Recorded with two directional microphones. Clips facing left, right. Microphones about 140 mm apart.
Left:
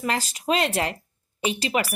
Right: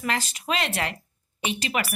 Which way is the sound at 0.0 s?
35° left (ahead or behind).